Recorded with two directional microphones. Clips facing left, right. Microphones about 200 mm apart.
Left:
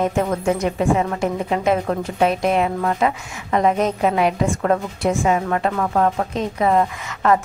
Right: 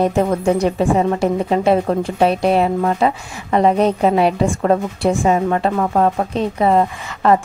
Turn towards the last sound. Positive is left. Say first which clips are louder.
# right 3 dB
turn(degrees=-30)  # may be behind; listen again after turning